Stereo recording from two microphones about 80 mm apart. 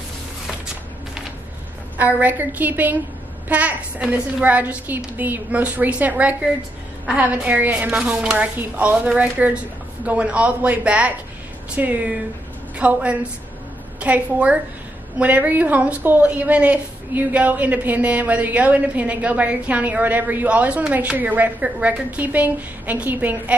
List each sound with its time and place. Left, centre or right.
2.0 s a woman's voice: right